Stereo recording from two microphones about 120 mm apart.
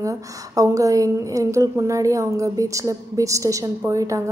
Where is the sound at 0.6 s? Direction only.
30° right (ahead or behind).